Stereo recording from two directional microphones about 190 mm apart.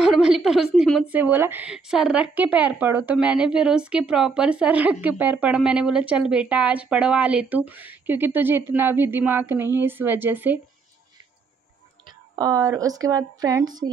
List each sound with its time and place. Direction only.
0.0 s a woman's voice: 5° right (ahead or behind)
12.4 s a woman's voice: 20° right (ahead or behind)